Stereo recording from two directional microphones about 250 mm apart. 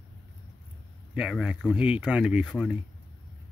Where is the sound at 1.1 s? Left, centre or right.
Centre.